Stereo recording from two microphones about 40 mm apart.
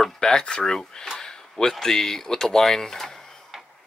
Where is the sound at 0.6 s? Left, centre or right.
Centre.